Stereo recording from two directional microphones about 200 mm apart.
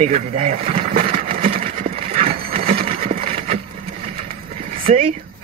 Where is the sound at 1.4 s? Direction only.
25° right (ahead or behind).